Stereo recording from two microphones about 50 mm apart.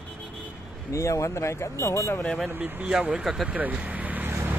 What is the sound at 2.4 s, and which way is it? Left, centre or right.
Speech, right.